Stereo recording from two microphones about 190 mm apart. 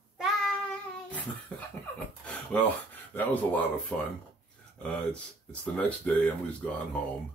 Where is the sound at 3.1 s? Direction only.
10° left (ahead or behind).